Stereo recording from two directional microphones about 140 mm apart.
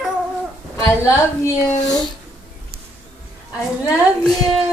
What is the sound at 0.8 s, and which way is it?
A woman's voice, 20° left (ahead or behind).